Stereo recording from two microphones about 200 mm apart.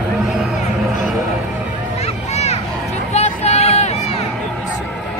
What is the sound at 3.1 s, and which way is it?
Music, 35° left (ahead or behind).